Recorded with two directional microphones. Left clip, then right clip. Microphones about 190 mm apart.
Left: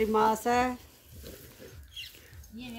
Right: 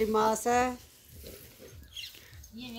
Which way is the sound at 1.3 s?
35° left (ahead or behind).